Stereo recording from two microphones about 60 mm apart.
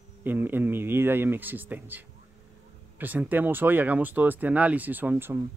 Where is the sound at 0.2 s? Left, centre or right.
Right.